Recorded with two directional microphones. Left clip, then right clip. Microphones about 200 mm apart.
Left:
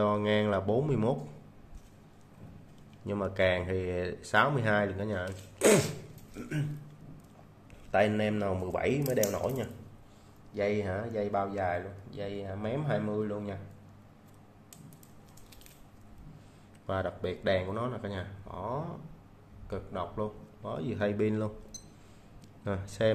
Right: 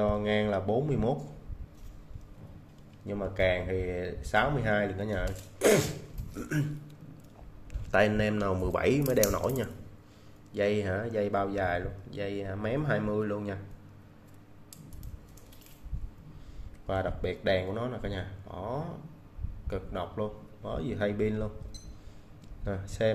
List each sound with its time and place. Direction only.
0.0 s speech: 5° left (ahead or behind)
3.1 s speech: 10° left (ahead or behind)
7.9 s speech: 15° right (ahead or behind)
16.8 s speech: centre (ahead or behind)
22.7 s speech: 5° left (ahead or behind)